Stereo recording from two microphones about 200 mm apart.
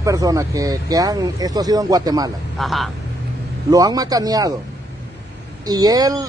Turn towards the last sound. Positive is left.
turn(degrees=-20)  # may be behind; listen again after turning